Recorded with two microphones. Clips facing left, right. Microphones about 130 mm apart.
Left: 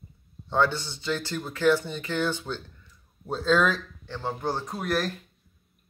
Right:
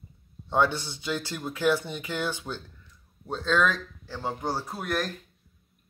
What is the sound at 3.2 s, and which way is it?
Speech, 5° left (ahead or behind).